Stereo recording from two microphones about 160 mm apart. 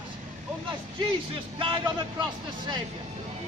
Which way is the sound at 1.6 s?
30° right (ahead or behind).